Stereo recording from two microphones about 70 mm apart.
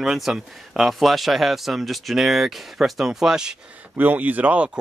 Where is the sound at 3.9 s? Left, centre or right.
Right.